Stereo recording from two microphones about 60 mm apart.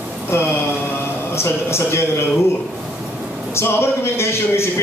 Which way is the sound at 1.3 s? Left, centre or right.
Left.